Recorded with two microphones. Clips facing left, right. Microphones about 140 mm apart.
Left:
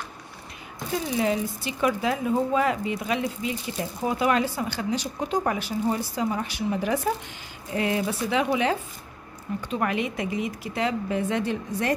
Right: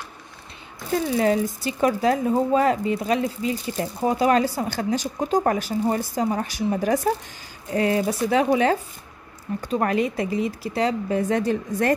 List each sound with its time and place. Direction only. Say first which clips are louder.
1.1 s speech: right 4 dB; 45° right (ahead or behind)